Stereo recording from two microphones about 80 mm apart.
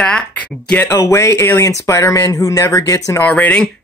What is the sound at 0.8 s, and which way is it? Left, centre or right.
Speech, left.